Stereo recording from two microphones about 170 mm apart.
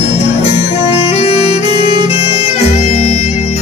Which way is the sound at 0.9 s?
35° left (ahead or behind).